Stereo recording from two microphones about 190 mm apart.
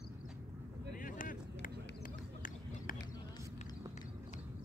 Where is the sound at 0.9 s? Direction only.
45° left (ahead or behind).